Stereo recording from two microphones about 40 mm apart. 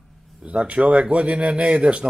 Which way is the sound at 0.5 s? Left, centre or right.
Right.